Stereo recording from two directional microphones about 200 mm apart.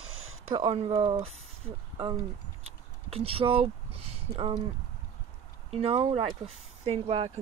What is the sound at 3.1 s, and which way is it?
Speech, 30° right (ahead or behind).